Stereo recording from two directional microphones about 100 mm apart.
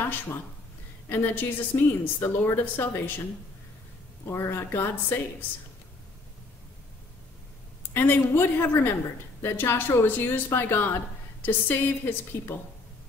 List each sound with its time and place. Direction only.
0.0 s speech: 25° left (ahead or behind)
4.3 s speech: 25° left (ahead or behind)
7.9 s speech: 20° left (ahead or behind)